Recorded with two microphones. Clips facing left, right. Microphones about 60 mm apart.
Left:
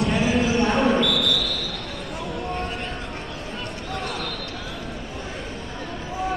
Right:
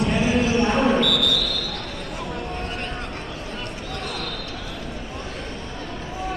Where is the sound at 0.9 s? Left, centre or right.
Right.